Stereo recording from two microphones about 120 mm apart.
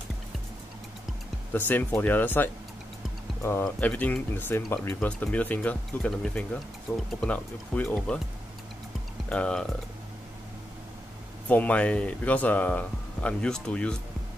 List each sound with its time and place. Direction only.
1.5 s speech: 15° left (ahead or behind)
3.8 s speech: 15° left (ahead or behind)
9.3 s speech: 10° left (ahead or behind)
11.4 s speech: 15° left (ahead or behind)